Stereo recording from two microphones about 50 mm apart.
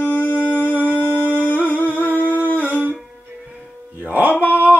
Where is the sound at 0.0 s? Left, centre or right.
Left.